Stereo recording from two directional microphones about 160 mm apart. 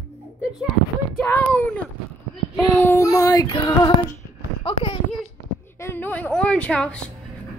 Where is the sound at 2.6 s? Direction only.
15° left (ahead or behind).